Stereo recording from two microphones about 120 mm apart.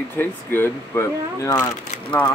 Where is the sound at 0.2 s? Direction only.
15° left (ahead or behind).